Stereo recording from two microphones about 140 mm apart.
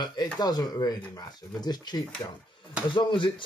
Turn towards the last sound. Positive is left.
turn(degrees=35)  # may be behind; listen again after turning